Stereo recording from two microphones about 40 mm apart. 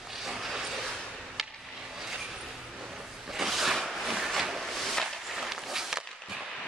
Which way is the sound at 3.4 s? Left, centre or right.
Centre.